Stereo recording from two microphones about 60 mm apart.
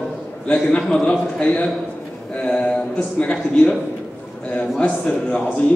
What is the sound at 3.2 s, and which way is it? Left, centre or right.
Speech, centre.